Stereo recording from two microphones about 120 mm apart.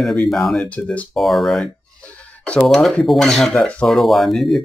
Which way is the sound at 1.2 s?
Centre (ahead or behind).